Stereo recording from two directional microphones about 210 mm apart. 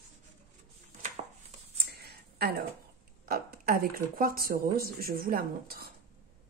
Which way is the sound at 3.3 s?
45° right (ahead or behind).